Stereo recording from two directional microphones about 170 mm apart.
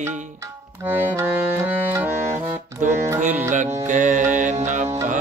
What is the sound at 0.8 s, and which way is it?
Music, 10° right (ahead or behind).